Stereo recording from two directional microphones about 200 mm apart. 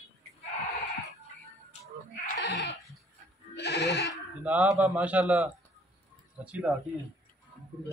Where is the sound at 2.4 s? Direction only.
60° left (ahead or behind).